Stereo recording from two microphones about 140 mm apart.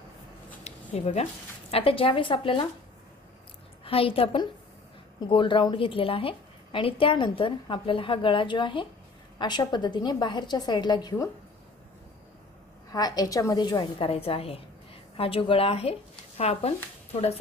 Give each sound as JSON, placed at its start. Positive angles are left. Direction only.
{"t": 0.7, "sound": "a sound", "side_deg": 50}
{"t": 1.7, "sound": "a woman's voice", "side_deg": 45}
{"t": 3.8, "sound": "a woman's voice", "side_deg": 40}
{"t": 12.9, "sound": "a woman's voice", "side_deg": 25}
{"t": 14.0, "sound": "a woman's voice", "side_deg": 45}